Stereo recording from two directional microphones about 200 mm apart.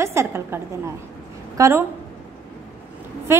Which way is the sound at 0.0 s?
15° right (ahead or behind).